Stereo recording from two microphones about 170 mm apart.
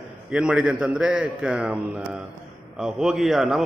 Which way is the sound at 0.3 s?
5° right (ahead or behind).